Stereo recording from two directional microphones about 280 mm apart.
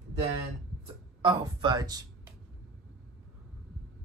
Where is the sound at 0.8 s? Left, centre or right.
Centre.